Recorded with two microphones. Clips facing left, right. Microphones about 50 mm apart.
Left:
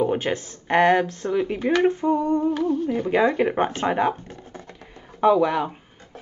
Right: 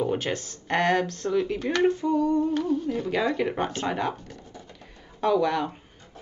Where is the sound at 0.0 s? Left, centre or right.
Left.